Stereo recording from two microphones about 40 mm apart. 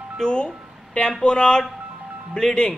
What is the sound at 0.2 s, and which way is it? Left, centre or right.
A man's voice, left.